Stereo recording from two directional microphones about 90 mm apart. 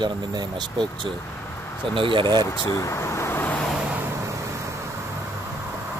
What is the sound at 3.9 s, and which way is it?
Vehicle, 20° right (ahead or behind).